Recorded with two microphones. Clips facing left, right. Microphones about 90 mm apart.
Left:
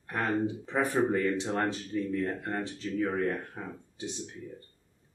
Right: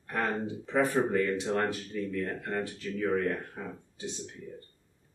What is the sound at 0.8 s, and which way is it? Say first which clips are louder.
Speech: left 4 dB; 20° left (ahead or behind).